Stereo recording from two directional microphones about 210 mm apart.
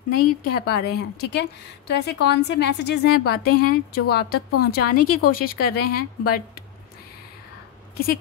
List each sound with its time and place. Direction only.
0.1 s a woman's voice: 45° left (ahead or behind)